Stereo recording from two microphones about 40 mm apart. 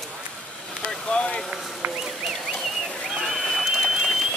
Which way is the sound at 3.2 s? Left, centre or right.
Centre.